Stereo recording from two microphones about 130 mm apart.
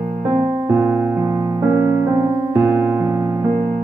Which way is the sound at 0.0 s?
10° right (ahead or behind).